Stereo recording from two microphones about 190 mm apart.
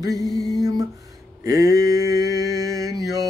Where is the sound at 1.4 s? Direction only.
15° right (ahead or behind).